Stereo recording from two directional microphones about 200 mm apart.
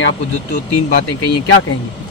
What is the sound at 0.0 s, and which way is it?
Speech, 55° left (ahead or behind).